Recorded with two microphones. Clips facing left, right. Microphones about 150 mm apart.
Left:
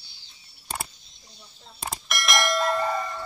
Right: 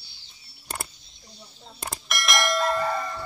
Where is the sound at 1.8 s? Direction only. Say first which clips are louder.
Even; centre (ahead or behind).